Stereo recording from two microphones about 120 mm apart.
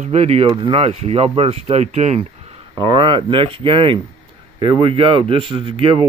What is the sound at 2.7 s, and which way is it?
A man's voice, 45° right (ahead or behind).